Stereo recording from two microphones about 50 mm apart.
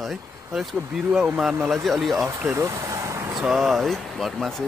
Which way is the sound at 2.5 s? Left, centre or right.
Right.